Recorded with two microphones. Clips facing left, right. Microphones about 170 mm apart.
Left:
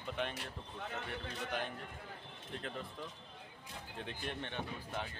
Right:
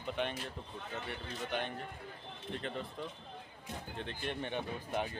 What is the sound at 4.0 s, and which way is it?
Speech, 5° left (ahead or behind).